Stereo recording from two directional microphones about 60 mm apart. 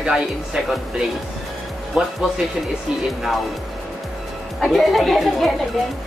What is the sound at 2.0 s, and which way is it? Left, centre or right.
Speech, centre.